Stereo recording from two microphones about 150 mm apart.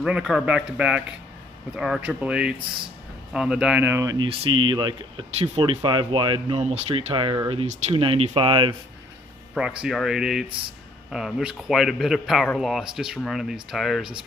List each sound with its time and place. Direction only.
0.0 s speech: 5° right (ahead or behind); by 4.3 s 20° right (ahead or behind)
4.3 s speech: 35° right (ahead or behind)
6.6 s speech: 45° right (ahead or behind)
7.2 s speech: 30° right (ahead or behind)
7.6 s speech: 50° right (ahead or behind)
8.0 s speech: 35° right (ahead or behind)
9.6 s speech: 5° right (ahead or behind)